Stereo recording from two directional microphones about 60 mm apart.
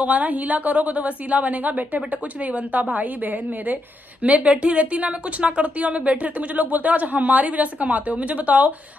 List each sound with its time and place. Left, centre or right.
0.0 s speech: right